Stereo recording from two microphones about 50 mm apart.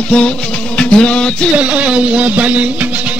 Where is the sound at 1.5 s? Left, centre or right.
Right.